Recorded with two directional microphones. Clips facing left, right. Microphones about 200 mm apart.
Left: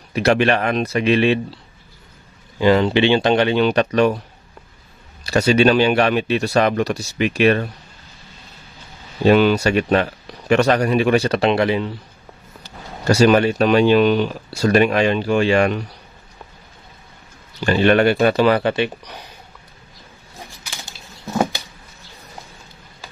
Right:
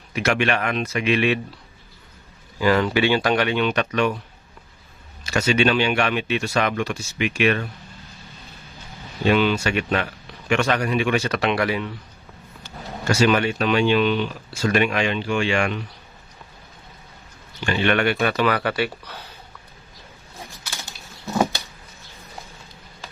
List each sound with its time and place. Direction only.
0.1 s speech: 35° left (ahead or behind)
2.6 s speech: 25° left (ahead or behind)
5.2 s speech: 35° left (ahead or behind)
9.2 s speech: 40° left (ahead or behind)
17.6 s speech: 35° left (ahead or behind); by 19.3 s 15° left (ahead or behind)
21.4 s a sound: 15° left (ahead or behind)